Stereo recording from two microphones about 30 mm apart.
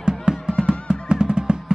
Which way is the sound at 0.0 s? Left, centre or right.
Right.